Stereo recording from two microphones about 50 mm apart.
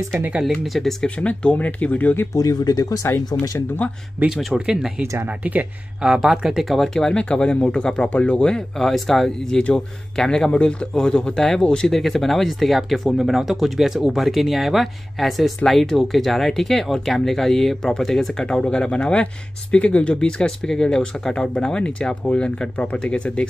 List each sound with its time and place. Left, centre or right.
0.4 s speech: centre
1.0 s speech: left
1.6 s speech: left
3.0 s speech: left
4.2 s speech: right
5.4 s speech: right
6.0 s speech: centre
6.7 s speech: centre
7.1 s speech: left
8.7 s speech: centre
9.6 s speech: left
12.0 s speech: centre